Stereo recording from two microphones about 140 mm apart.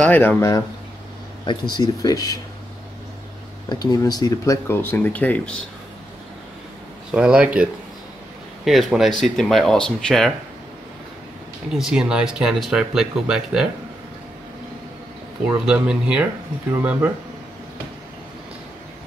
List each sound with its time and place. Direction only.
0.0 s speech: 10° left (ahead or behind)
1.4 s speech: 30° left (ahead or behind)
3.6 s speech: 30° left (ahead or behind)
4.6 s speech: 15° left (ahead or behind)
7.1 s speech: 10° right (ahead or behind)
8.6 s speech: centre (ahead or behind)
11.7 s speech: 5° right (ahead or behind)
15.4 s speech: 10° right (ahead or behind)